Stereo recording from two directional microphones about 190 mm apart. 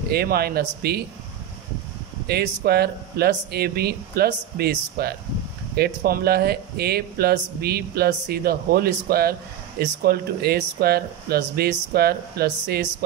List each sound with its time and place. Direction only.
0.1 s speech: 55° right (ahead or behind)
2.2 s speech: 55° right (ahead or behind)